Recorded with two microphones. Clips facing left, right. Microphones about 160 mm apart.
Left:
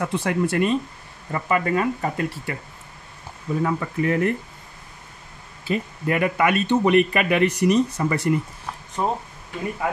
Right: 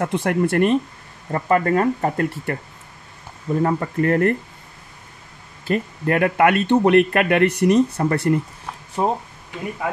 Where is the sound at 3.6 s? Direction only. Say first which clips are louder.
Right 3 dB; 55° right (ahead or behind).